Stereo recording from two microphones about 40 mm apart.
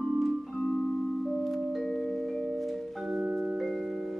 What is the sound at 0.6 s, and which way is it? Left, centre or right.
Music, left.